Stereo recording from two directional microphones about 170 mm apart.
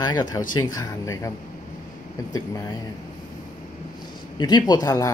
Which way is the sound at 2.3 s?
20° left (ahead or behind).